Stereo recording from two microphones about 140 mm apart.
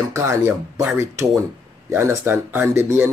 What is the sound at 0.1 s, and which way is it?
Speech, 20° right (ahead or behind).